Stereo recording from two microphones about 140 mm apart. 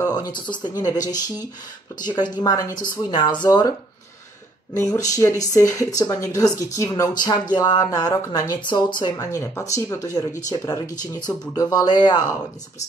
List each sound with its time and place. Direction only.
0.0 s speech: 30° left (ahead or behind)
2.0 s speech: 30° left (ahead or behind)
4.7 s speech: 20° left (ahead or behind)